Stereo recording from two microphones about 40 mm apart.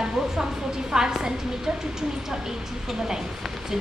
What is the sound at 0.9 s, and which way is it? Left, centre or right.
Speech, centre.